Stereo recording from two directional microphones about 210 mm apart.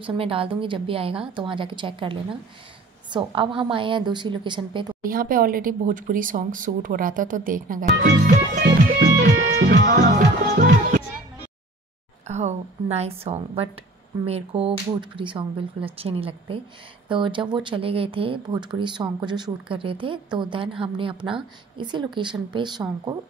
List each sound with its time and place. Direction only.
0.0 s speech: 25° right (ahead or behind)
5.0 s speech: 40° right (ahead or behind)
8.8 s music: 45° right (ahead or behind)
12.3 s speech: 35° right (ahead or behind)